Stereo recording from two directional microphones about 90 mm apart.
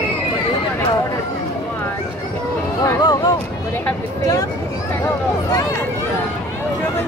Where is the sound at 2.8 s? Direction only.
45° left (ahead or behind).